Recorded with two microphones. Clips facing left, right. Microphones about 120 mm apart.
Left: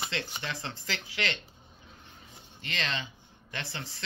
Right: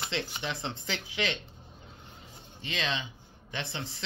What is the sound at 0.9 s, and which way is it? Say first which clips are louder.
Speech: right 1 dB; 10° right (ahead or behind).